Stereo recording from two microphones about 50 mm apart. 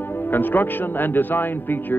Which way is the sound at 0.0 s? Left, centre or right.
Left.